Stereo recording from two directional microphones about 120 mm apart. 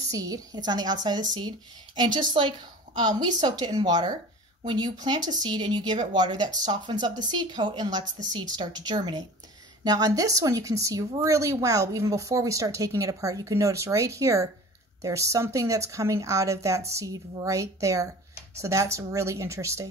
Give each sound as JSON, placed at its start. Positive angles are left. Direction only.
{"t": 0.1, "sound": "a woman's voice", "side_deg": -30}